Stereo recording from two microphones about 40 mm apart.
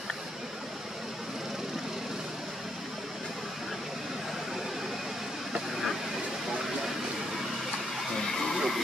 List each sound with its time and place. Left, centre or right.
8.1 s vehicle: centre